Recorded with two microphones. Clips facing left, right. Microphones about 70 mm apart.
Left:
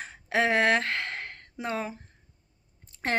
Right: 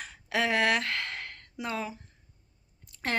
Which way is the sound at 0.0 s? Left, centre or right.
Left.